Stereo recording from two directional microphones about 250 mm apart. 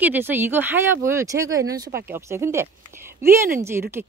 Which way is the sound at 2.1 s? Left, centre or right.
Centre.